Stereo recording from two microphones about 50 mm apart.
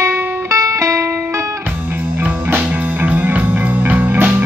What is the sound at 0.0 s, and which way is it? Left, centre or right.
Music, right.